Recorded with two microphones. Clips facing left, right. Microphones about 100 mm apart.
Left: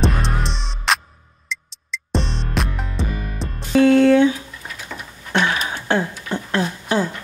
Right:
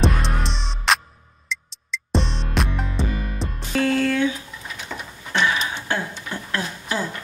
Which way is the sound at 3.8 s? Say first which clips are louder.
Left 8 dB; 20° left (ahead or behind).